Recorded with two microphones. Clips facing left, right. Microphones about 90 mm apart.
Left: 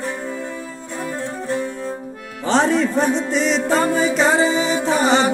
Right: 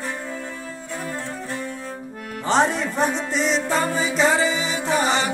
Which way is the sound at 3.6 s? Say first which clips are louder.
Left 5 dB; 40° left (ahead or behind).